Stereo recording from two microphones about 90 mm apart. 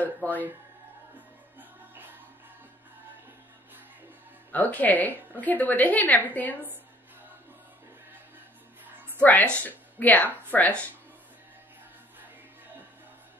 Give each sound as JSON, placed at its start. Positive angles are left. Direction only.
{"t": 0.0, "sound": "speech", "side_deg": 20}
{"t": 1.6, "sound": "music", "side_deg": -20}
{"t": 4.5, "sound": "a woman's voice", "side_deg": 15}
{"t": 8.9, "sound": "a sound", "side_deg": -20}
{"t": 9.2, "sound": "a woman's voice", "side_deg": 15}